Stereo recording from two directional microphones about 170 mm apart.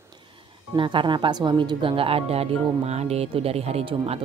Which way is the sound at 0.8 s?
30° right (ahead or behind).